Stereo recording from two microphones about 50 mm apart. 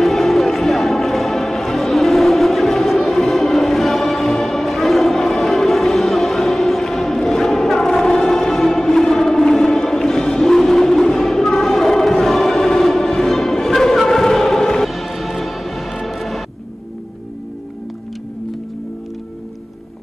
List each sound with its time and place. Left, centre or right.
0.0 s music: centre